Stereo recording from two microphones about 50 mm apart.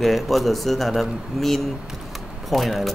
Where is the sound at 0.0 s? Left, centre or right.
Centre.